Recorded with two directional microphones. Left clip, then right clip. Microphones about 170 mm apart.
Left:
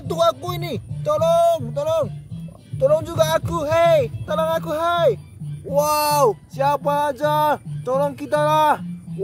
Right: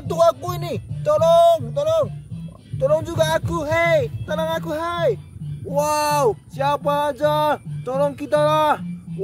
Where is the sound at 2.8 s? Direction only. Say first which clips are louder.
Left 1 dB; 10° left (ahead or behind).